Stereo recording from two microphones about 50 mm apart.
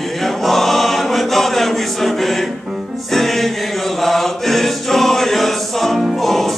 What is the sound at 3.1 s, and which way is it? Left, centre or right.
Music, centre.